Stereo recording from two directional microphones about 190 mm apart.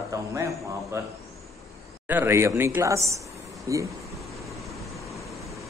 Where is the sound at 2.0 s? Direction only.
10° right (ahead or behind).